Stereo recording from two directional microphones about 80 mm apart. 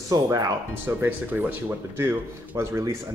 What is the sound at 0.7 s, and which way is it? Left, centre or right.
Speech, right.